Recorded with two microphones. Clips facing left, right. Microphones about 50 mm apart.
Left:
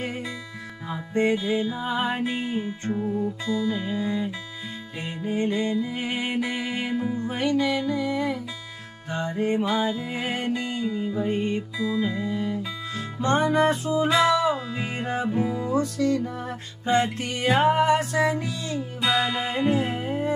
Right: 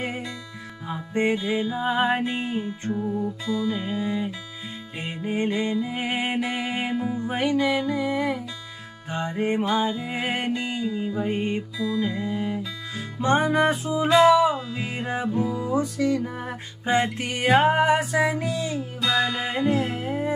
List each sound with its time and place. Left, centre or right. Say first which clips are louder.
0.8 s music: left 1 dB; centre
2.2 s music: even; centre
9.7 s music: right 1 dB; centre
9.9 s music: right 1 dB; centre
11.8 s music: even; centre
12.2 s music: even; centre
15.2 s music: right 1 dB; centre
15.6 s music: even; centre
19.1 s music: right 2 dB; centre